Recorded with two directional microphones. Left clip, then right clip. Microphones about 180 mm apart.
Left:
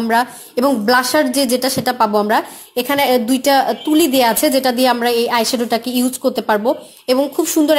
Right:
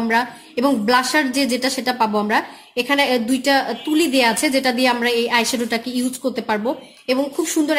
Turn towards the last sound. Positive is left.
turn(degrees=25)  # may be behind; listen again after turning